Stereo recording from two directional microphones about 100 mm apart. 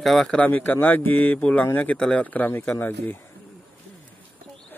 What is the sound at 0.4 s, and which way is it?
Speech, 15° left (ahead or behind).